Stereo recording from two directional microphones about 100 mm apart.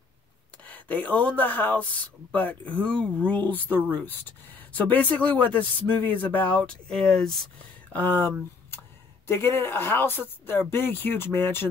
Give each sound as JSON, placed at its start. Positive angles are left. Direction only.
{"t": 0.7, "sound": "speech", "side_deg": 15}
{"t": 7.9, "sound": "speech", "side_deg": 20}